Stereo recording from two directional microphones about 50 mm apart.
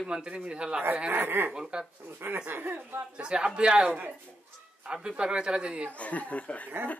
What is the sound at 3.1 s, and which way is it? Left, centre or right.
Speech, centre.